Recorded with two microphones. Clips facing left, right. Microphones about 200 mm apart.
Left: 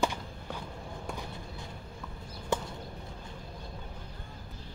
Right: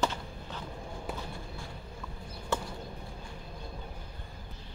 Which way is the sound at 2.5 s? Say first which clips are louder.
Left 2 dB; 15° left (ahead or behind).